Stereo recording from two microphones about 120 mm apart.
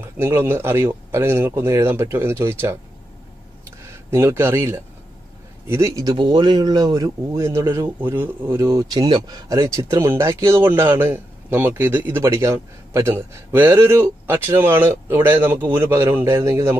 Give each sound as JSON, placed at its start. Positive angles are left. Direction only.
{"t": 0.0, "sound": "speech", "side_deg": -20}
{"t": 3.6, "sound": "a sound", "side_deg": -20}
{"t": 5.7, "sound": "speech", "side_deg": -25}
{"t": 6.1, "sound": "speech", "side_deg": -40}